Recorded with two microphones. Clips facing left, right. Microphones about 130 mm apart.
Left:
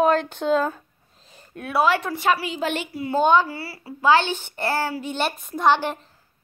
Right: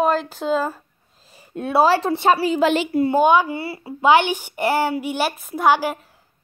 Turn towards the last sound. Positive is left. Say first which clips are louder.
# right 2 dB
turn(degrees=-5)  # may be behind; listen again after turning